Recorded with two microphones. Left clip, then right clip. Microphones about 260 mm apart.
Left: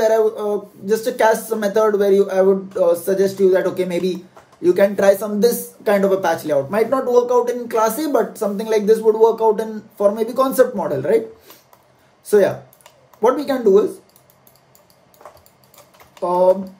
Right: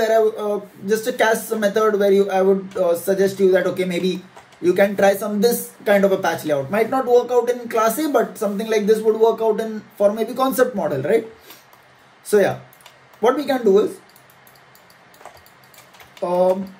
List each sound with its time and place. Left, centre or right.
0.0 s speech: centre
12.3 s speech: centre